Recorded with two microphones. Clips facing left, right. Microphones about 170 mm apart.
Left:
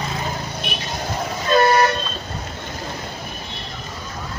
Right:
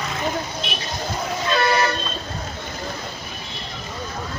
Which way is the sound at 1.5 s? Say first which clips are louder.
Left 5 dB; 45° left (ahead or behind).